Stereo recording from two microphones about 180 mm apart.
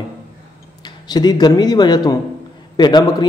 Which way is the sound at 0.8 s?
25° left (ahead or behind).